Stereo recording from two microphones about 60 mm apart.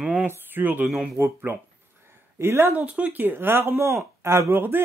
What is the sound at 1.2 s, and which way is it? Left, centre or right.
Speech, right.